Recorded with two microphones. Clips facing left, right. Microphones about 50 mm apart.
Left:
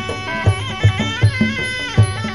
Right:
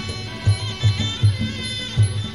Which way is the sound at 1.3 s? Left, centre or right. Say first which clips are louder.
Left 9 dB; left.